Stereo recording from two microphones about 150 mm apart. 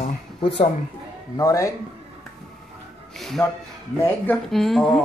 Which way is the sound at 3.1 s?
Centre (ahead or behind).